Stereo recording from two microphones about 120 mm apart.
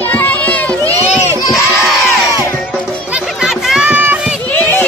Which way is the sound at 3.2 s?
Centre (ahead or behind).